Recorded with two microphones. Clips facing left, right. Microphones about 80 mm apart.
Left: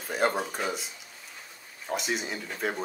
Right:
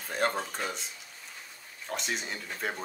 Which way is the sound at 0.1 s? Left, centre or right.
Centre.